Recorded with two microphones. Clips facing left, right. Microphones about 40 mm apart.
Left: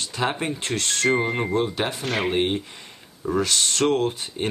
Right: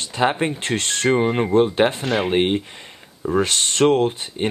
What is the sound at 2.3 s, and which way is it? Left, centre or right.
Speech, right.